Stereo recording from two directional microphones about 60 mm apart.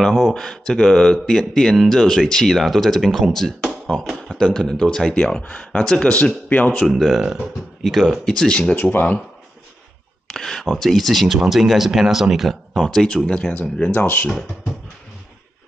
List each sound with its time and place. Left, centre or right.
0.0 s speech: centre
6.5 s speech: left
7.0 s speech: centre
8.3 s speech: centre
10.2 s speech: centre
13.5 s speech: left